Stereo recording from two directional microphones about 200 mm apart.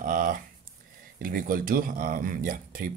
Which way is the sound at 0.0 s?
45° right (ahead or behind).